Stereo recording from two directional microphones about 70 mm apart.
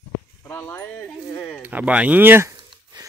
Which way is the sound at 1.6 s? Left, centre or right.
Right.